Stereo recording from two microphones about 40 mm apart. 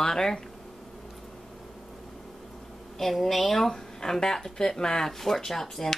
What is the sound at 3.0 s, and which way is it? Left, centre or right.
Speech, centre.